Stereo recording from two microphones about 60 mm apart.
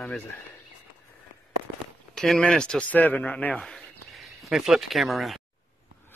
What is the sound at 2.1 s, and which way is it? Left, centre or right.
Speech, centre.